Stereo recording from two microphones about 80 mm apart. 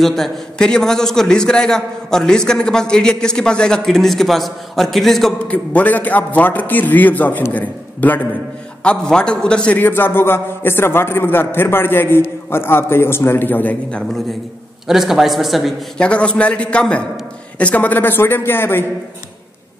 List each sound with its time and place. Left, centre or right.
0.0 s a man's voice: centre
5.5 s a man's voice: centre
9.8 s a man's voice: left
14.9 s speech: centre
16.0 s a man's voice: centre